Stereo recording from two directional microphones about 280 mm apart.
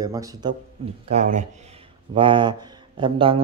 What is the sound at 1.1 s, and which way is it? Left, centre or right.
Speech, right.